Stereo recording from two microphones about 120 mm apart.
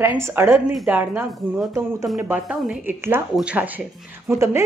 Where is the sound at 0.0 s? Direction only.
15° right (ahead or behind).